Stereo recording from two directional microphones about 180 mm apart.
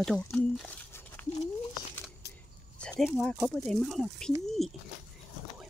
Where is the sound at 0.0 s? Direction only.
5° left (ahead or behind).